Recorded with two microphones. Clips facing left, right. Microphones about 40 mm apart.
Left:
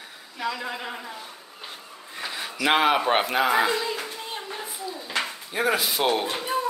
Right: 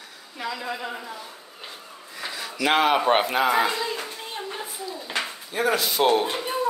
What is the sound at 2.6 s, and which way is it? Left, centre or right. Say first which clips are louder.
A man's voice: even; centre.